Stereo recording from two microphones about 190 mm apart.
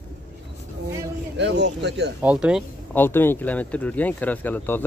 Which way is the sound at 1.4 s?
65° right (ahead or behind).